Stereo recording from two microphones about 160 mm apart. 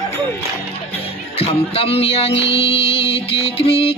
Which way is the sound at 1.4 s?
35° left (ahead or behind).